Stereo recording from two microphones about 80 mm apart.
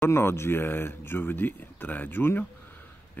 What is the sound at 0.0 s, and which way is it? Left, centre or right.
Speech, left.